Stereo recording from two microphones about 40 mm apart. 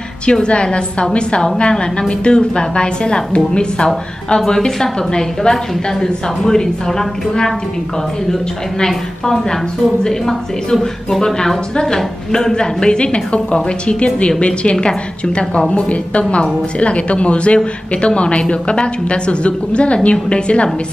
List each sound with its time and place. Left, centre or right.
0.3 s a woman's voice: left
8.7 s a woman's voice: centre